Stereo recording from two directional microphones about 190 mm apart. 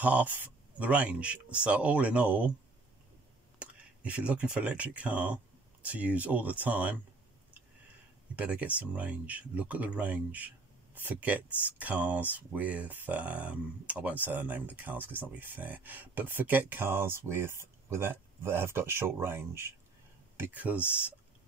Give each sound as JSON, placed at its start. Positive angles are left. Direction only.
{"t": 0.0, "sound": "speech", "side_deg": -10}
{"t": 3.5, "sound": "speech", "side_deg": -5}
{"t": 8.4, "sound": "speech", "side_deg": -10}